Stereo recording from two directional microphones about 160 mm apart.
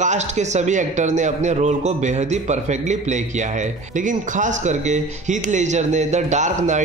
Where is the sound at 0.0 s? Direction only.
45° right (ahead or behind).